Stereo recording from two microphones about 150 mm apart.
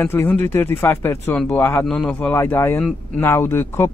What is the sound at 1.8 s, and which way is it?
Speech, 5° left (ahead or behind).